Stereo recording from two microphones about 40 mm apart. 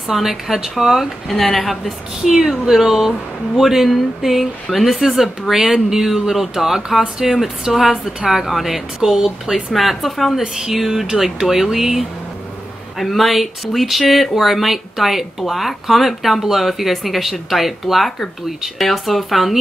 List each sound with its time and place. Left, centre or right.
0.1 s speech: centre
1.5 s a woman's voice: centre
2.4 s speech: centre
7.7 s speech: centre
9.7 s speech: centre
10.4 s speech: centre